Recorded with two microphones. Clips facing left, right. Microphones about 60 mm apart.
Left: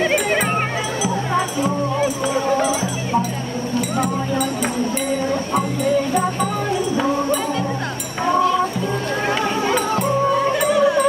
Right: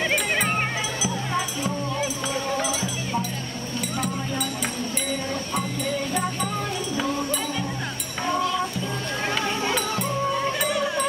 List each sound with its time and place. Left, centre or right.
1.0 s music: left
8.3 s a sound: left
10.7 s music: left